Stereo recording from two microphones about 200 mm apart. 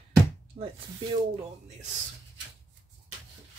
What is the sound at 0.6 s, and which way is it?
Speech, 30° right (ahead or behind).